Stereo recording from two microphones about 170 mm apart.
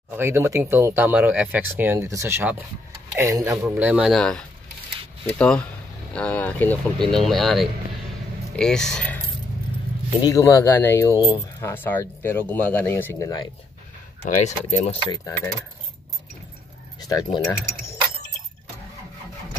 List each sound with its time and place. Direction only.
0.1 s speech: 15° right (ahead or behind); by 9.2 s 5° left (ahead or behind)
10.2 s speech: 20° left (ahead or behind)
14.2 s speech: 40° left (ahead or behind)
17.0 s speech: 25° left (ahead or behind)